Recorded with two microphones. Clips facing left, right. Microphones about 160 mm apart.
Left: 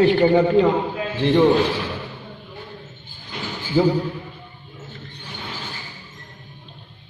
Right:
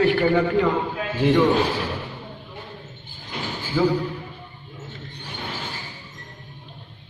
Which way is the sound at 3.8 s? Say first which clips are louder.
Left 3 dB; 30° left (ahead or behind).